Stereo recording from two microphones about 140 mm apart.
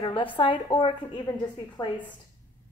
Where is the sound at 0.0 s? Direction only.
35° left (ahead or behind).